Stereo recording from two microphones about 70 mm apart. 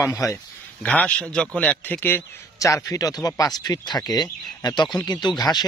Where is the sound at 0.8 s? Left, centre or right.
Centre.